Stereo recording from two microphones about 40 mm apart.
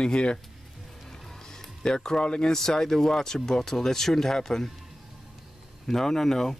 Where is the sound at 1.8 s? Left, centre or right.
Centre.